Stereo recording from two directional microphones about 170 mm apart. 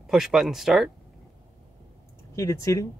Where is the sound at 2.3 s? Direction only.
15° left (ahead or behind).